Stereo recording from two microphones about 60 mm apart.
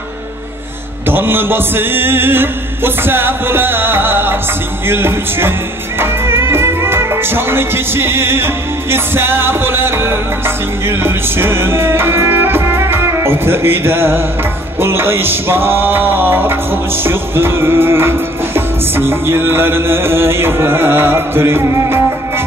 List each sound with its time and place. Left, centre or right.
1.0 s music: right